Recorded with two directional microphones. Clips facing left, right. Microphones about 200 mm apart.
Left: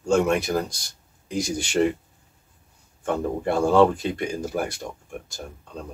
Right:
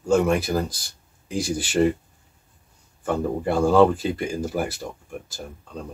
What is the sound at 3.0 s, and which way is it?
Speech, 5° right (ahead or behind).